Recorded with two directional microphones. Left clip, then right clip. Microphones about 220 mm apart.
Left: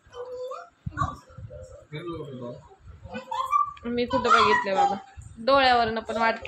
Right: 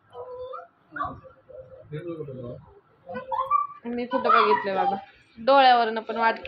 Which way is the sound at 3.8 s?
20° left (ahead or behind).